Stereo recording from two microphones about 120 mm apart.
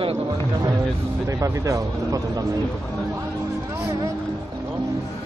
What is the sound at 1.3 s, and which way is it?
Speech, 25° right (ahead or behind).